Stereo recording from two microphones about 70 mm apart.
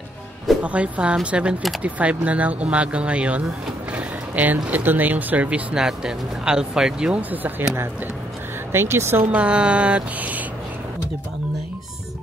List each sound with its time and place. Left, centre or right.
0.6 s speech: centre
7.2 s speech: right
8.7 s speech: right
9.3 s speech: centre